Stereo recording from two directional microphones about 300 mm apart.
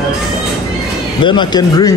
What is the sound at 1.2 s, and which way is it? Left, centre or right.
Speech, centre.